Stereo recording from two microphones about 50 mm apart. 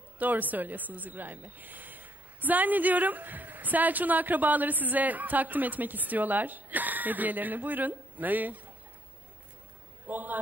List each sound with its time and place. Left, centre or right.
0.2 s speech: right
10.0 s speech: right